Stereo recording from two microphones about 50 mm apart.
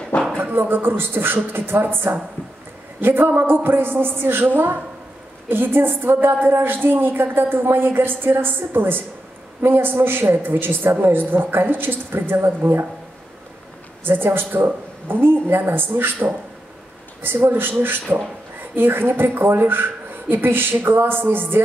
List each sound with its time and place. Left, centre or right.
0.4 s a woman's voice: right
5.5 s a woman's voice: right
14.0 s a woman's voice: right